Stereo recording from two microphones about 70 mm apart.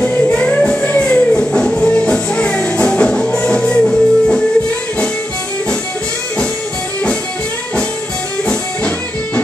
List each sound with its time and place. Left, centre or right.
0.0 s music: centre
8.5 s music: centre